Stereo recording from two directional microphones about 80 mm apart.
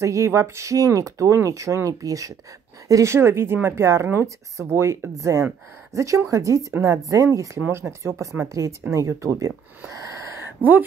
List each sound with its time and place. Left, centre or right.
0.0 s a woman's voice: right